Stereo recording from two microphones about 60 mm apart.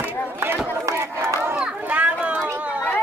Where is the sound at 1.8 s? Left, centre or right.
Right.